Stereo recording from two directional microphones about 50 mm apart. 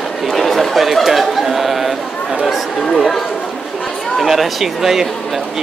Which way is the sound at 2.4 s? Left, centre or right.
Centre.